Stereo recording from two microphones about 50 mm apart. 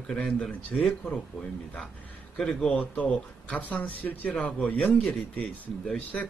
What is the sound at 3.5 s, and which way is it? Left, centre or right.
Speech, left.